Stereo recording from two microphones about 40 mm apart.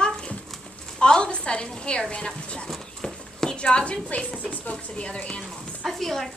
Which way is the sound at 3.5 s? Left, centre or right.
Left.